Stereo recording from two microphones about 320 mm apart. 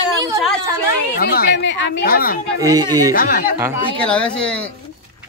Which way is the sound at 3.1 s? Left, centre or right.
Left.